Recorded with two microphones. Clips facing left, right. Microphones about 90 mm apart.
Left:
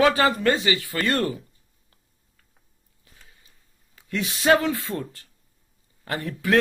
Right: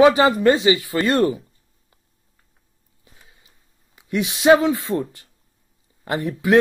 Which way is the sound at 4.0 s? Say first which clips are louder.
Right 5 dB; 20° right (ahead or behind).